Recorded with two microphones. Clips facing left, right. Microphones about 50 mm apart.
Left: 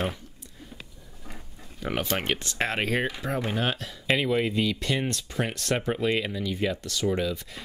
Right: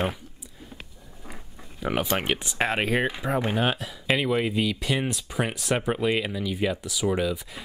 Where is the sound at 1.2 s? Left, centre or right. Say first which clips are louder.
Right 1 dB; centre.